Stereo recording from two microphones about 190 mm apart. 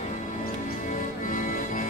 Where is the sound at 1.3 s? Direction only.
45° left (ahead or behind).